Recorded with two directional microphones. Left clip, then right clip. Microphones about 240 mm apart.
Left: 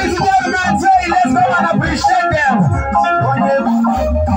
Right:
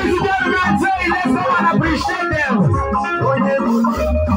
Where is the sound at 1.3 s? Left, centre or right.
Left.